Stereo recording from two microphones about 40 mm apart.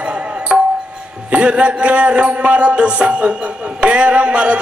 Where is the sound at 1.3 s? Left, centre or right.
Right.